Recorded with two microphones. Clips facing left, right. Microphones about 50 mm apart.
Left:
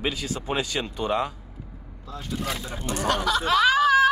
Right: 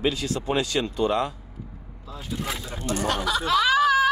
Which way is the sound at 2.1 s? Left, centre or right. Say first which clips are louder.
Left 1 dB; centre.